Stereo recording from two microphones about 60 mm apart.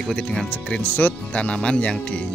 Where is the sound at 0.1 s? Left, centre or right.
Centre.